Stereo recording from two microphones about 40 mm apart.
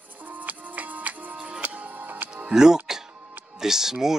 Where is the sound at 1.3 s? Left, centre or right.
Right.